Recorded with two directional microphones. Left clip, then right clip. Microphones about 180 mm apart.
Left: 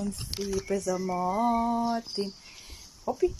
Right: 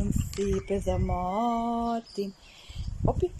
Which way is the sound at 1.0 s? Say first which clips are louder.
Left 1 dB; centre (ahead or behind).